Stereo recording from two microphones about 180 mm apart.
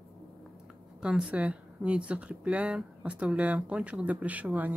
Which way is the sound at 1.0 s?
5° right (ahead or behind).